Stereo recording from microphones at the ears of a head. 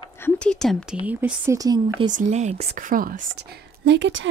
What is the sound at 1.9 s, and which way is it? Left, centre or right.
Speech, right.